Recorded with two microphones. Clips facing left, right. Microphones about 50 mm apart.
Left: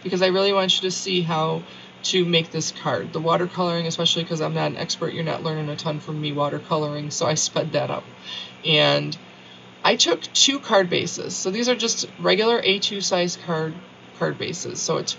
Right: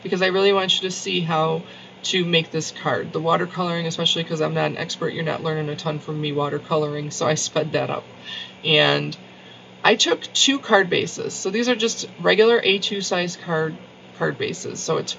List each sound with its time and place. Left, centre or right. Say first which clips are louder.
0.1 s speech: right 1 dB; right